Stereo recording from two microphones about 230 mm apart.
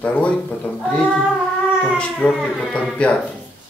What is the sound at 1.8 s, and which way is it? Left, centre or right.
Speech, centre.